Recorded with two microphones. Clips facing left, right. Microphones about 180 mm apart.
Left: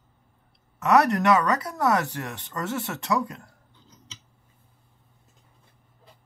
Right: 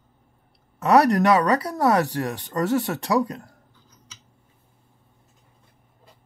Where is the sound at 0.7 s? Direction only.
35° right (ahead or behind).